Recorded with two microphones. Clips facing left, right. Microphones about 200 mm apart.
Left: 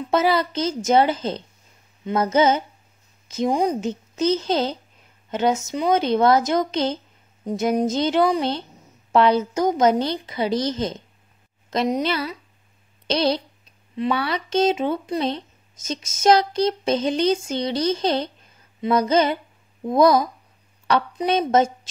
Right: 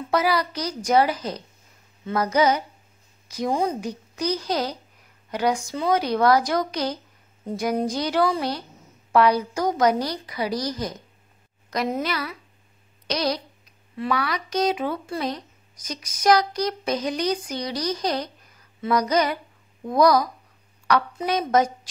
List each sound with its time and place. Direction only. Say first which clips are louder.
0.1 s a woman's voice: left 3 dB; 25° left (ahead or behind)